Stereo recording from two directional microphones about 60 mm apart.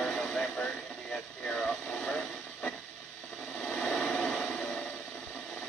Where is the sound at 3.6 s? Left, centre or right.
Centre.